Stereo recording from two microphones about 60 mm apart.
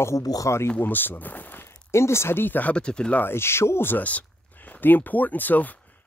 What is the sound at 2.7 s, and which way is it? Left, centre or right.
Speech, centre.